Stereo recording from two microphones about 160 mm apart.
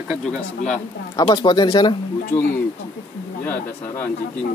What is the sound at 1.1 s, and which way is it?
Speech, 30° left (ahead or behind).